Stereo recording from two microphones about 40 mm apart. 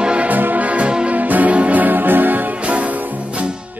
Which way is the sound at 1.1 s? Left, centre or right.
Right.